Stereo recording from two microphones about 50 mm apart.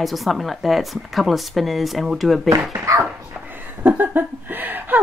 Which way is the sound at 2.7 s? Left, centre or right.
Right.